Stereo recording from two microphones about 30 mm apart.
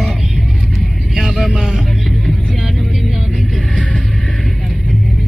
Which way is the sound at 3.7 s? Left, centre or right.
Left.